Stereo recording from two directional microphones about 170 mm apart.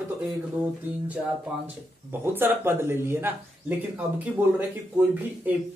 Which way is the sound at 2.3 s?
15° right (ahead or behind).